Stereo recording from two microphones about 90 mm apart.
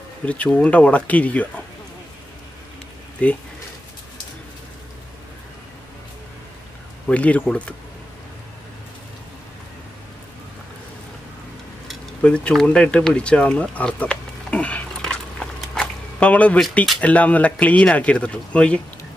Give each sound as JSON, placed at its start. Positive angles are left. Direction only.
{"t": 0.2, "sound": "speech", "side_deg": 15}
{"t": 3.2, "sound": "speech", "side_deg": 15}
{"t": 7.1, "sound": "speech", "side_deg": 15}
{"t": 12.2, "sound": "speech", "side_deg": 10}
{"t": 12.6, "sound": "a sound", "side_deg": 10}
{"t": 17.0, "sound": "speech", "side_deg": 15}